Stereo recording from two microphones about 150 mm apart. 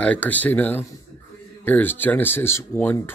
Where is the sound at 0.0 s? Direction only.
10° left (ahead or behind).